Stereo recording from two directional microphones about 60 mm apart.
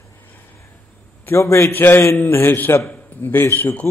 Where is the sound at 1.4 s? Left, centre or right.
Left.